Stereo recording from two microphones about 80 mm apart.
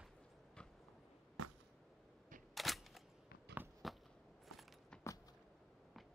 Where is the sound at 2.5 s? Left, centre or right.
Centre.